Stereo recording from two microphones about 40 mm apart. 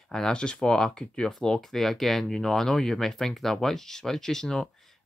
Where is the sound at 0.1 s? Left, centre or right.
Centre.